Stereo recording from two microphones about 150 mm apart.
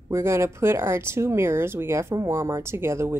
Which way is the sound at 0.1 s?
20° right (ahead or behind).